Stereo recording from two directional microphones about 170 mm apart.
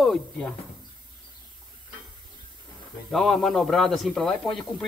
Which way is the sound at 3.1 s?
Centre (ahead or behind).